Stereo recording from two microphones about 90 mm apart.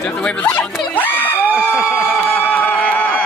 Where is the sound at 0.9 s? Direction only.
20° left (ahead or behind).